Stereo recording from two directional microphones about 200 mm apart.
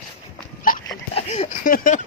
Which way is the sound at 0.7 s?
45° left (ahead or behind).